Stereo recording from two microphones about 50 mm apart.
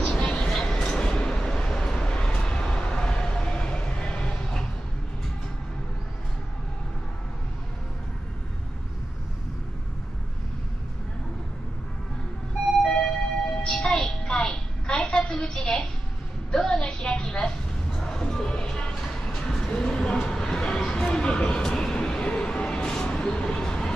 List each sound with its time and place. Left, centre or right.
0.0 s vehicle: centre
0.5 s train: centre
1.7 s vehicle: centre
12.8 s emergency vehicle: centre
13.6 s music: centre
16.5 s a sound: centre
17.9 s music: centre
21.7 s train: centre
22.2 s a sound: left
22.8 s a sound: centre